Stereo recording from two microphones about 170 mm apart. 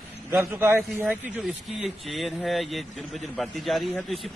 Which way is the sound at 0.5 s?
10° right (ahead or behind).